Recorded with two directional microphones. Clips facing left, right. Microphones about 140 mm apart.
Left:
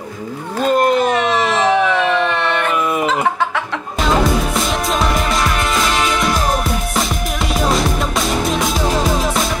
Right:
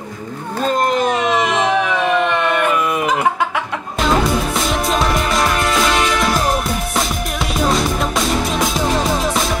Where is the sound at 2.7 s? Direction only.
Centre (ahead or behind).